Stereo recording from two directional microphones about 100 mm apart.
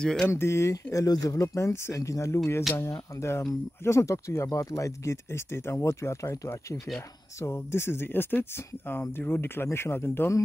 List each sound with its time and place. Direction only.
0.0 s speech: 10° left (ahead or behind)
0.3 s speech: 25° left (ahead or behind)